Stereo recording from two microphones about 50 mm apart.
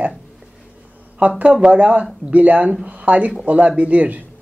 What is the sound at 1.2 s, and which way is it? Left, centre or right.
Speech, right.